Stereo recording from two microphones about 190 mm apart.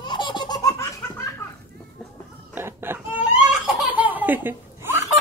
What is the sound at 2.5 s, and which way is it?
Laughter, 10° right (ahead or behind).